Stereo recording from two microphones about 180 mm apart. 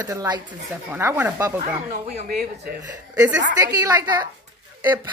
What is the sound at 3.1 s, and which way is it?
A woman's voice, 20° right (ahead or behind).